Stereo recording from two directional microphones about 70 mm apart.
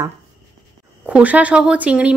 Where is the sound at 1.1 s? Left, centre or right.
Centre.